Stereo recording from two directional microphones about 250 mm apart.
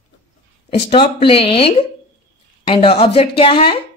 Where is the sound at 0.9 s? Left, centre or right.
Left.